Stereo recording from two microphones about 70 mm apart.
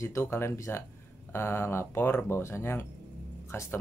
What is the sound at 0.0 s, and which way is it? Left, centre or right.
Speech, left.